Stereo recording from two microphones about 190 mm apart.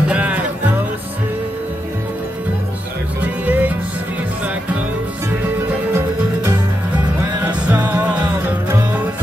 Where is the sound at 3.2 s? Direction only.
5° right (ahead or behind).